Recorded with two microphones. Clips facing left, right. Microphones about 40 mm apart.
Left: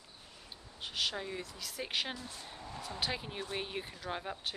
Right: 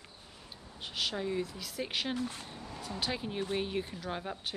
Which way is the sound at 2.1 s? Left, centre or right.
Right.